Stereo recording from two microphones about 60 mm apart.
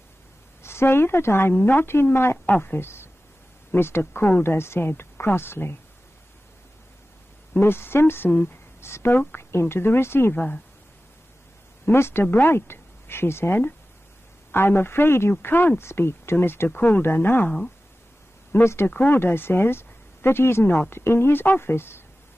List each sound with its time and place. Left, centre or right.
0.6 s a woman's voice: left
1.5 s speech: left
2.3 s a woman's voice: left
7.5 s speech: left
8.3 s speech: left
8.8 s a woman's voice: left
10.3 s speech: left
11.8 s speech: left
15.8 s speech: left
18.5 s a woman's voice: left